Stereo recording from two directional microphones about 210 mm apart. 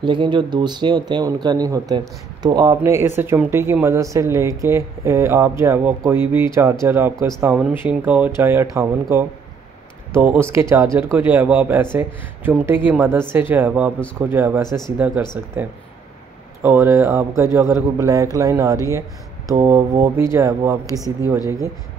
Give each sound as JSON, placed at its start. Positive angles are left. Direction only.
{"t": 0.0, "sound": "speech", "side_deg": -20}